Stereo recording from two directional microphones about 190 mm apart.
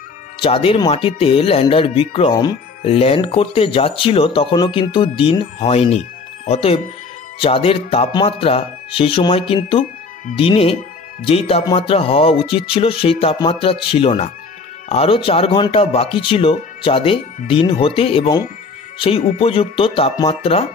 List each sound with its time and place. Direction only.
0.4 s speech: 30° left (ahead or behind)